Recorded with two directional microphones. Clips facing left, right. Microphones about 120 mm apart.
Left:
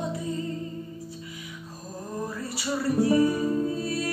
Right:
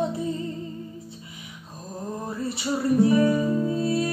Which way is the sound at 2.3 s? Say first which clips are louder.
Right 6 dB; 25° right (ahead or behind).